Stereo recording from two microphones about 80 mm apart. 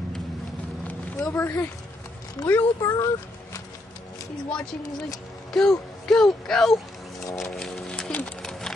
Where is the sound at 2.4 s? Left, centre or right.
Left.